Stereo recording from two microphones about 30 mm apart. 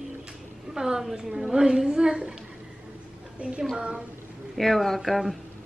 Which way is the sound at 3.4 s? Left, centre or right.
Right.